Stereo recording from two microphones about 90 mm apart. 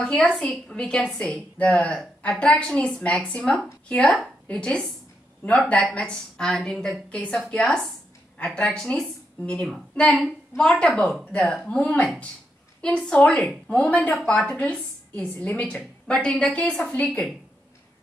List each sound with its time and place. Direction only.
0.0 s a woman's voice: 10° left (ahead or behind)
13.7 s a woman's voice: 15° left (ahead or behind)